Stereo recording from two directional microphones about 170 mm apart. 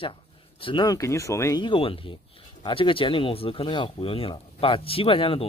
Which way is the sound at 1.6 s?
30° left (ahead or behind).